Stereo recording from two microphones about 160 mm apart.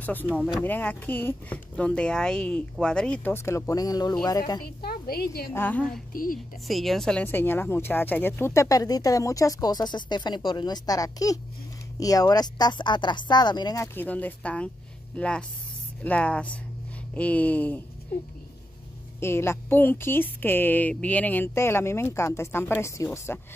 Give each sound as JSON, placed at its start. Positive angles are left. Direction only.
{"t": 0.0, "sound": "a woman's voice", "side_deg": 10}
{"t": 4.6, "sound": "a woman's voice", "side_deg": 70}
{"t": 5.5, "sound": "a woman's voice", "side_deg": 10}
{"t": 13.9, "sound": "a woman's voice", "side_deg": 10}
{"t": 19.1, "sound": "a woman's voice", "side_deg": 15}